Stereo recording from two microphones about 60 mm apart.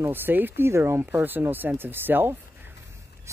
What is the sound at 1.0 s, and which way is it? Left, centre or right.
Speech, right.